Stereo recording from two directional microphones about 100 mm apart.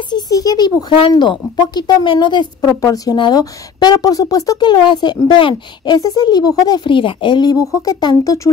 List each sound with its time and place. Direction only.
0.1 s a child's voice: 40° left (ahead or behind)
2.7 s speech: 35° left (ahead or behind)
3.2 s speech: 45° left (ahead or behind)
5.9 s speech: 40° left (ahead or behind)